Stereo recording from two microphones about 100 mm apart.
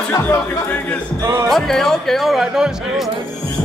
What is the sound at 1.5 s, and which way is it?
Speech, 5° left (ahead or behind).